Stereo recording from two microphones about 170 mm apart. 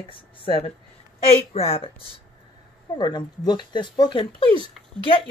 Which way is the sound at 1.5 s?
35° left (ahead or behind).